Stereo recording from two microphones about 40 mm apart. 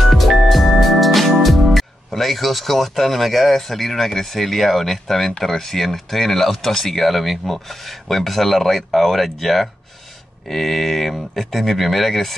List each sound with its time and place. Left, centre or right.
0.0 s music: centre
3.5 s speech: centre